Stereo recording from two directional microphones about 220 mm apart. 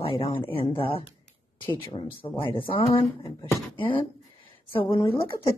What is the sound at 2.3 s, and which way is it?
Speech, 25° left (ahead or behind).